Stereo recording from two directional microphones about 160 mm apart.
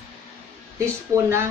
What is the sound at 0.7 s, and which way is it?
Speech, 15° right (ahead or behind).